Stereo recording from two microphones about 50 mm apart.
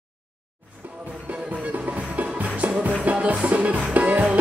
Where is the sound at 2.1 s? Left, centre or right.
Right.